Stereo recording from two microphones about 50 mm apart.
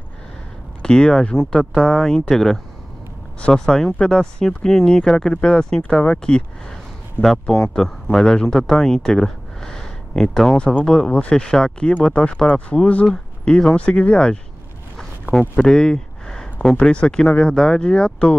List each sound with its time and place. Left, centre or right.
0.8 s speech: centre
13.1 s speech: centre
13.7 s speech: left
15.5 s a sound: centre
16.8 s speech: centre